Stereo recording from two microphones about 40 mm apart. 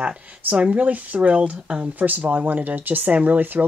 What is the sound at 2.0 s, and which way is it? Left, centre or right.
Speech, right.